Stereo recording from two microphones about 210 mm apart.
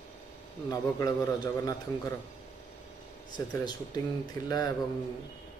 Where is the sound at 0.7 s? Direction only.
15° left (ahead or behind).